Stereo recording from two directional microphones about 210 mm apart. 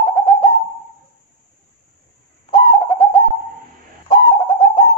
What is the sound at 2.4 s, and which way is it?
Bird, 20° left (ahead or behind).